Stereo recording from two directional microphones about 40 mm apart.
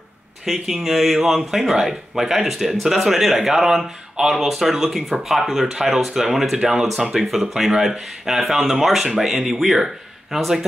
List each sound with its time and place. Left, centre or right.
0.5 s speech: centre